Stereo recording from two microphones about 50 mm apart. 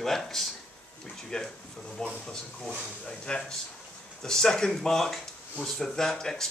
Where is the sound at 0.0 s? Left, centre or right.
Centre.